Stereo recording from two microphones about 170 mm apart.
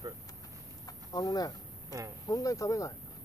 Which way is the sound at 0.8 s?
20° left (ahead or behind).